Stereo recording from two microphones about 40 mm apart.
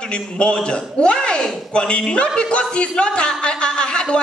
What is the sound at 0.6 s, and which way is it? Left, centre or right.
Speech, left.